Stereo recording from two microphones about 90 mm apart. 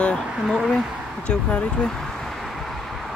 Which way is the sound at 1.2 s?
10° left (ahead or behind).